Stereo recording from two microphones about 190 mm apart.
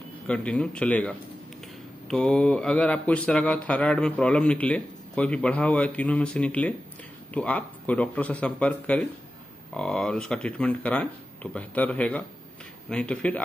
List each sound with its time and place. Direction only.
0.3 s speech: 5° left (ahead or behind)